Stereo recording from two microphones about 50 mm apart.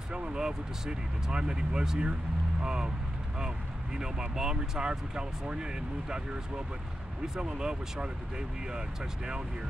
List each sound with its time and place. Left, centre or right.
0.1 s speech: centre